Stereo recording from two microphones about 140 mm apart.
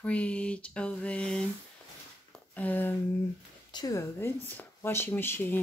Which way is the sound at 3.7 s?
30° left (ahead or behind).